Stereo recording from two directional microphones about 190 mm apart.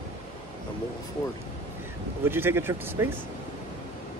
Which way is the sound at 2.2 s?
10° right (ahead or behind).